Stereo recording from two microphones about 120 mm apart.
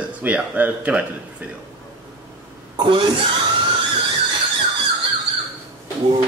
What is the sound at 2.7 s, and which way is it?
Speech, 45° right (ahead or behind).